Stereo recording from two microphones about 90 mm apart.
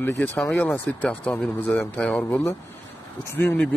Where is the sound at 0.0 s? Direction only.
20° left (ahead or behind).